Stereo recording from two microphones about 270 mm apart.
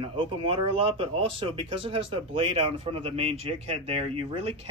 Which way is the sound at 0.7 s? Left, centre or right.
Centre.